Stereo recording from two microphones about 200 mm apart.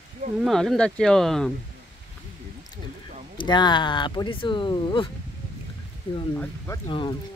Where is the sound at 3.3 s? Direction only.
20° left (ahead or behind).